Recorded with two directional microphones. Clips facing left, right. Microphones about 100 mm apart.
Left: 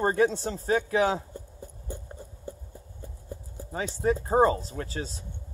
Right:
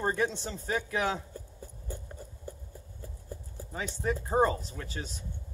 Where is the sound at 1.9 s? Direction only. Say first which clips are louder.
Left 2 dB; 25° left (ahead or behind).